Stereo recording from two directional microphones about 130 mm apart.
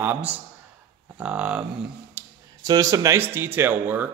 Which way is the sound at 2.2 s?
20° right (ahead or behind).